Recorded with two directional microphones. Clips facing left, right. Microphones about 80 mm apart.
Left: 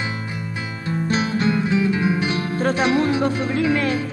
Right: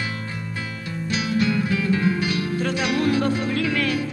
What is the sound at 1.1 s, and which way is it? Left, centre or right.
Music, left.